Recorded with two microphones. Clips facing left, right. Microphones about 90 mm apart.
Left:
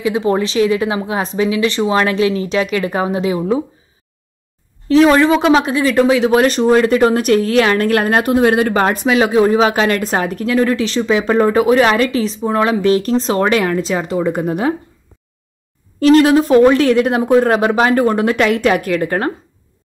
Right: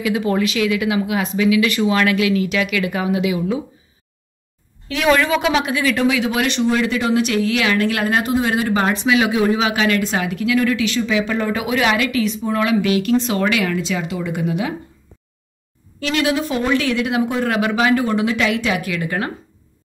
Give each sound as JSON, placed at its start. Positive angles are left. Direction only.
{"t": 0.0, "sound": "speech", "side_deg": 30}
{"t": 4.8, "sound": "speech", "side_deg": 35}
{"t": 16.0, "sound": "speech", "side_deg": 40}